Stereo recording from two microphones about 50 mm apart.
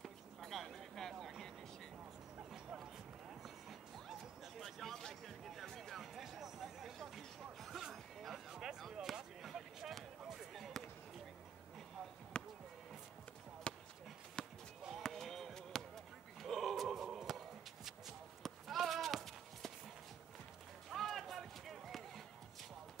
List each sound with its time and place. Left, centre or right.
0.0 s a sound: centre
2.3 s music: right
2.8 s run: centre
4.6 s a sound: centre
10.2 s basketball bounce: centre
12.3 s basketball bounce: centre
13.7 s basketball bounce: centre
14.8 s basketball bounce: centre
15.0 s a sound: centre
17.4 s bleat: centre
20.9 s basketball bounce: centre